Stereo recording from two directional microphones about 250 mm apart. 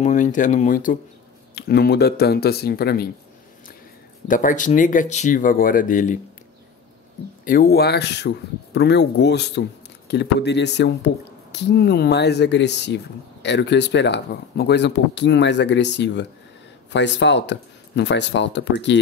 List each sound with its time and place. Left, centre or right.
0.0 s speech: left
4.3 s speech: left
7.4 s speech: left